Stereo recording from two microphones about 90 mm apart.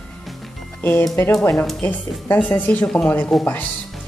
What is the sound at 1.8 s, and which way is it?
Speech, 20° left (ahead or behind).